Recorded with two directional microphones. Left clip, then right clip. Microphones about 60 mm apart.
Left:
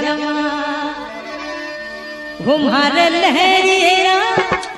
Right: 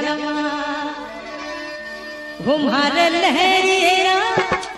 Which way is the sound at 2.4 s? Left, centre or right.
Left.